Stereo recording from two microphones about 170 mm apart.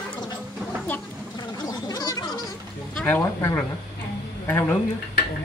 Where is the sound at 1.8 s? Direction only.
20° left (ahead or behind).